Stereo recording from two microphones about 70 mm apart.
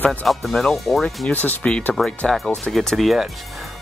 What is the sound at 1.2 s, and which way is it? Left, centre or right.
Speech, left.